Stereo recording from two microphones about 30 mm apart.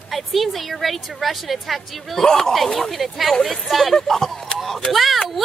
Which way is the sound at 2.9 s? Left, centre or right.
Centre.